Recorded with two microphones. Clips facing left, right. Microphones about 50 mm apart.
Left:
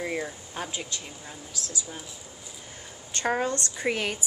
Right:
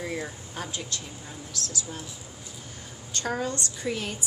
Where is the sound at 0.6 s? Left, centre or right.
Centre.